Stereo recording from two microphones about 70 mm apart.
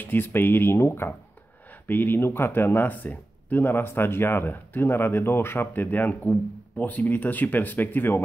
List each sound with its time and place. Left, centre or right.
0.0 s speech: left
1.7 s speech: left